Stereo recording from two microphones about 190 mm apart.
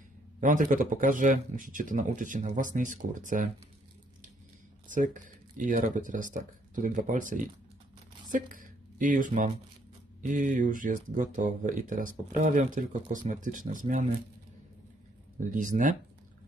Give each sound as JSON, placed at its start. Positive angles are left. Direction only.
{"t": 0.4, "sound": "speech", "side_deg": -45}
{"t": 4.8, "sound": "speech", "side_deg": -45}
{"t": 15.5, "sound": "speech", "side_deg": -45}